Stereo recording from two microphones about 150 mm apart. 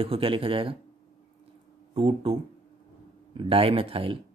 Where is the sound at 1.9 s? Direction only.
40° right (ahead or behind).